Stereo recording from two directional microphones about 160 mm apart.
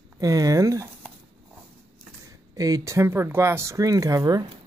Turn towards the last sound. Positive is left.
turn(degrees=-25)  # may be behind; listen again after turning